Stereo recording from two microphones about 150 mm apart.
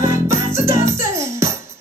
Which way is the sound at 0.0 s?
20° right (ahead or behind).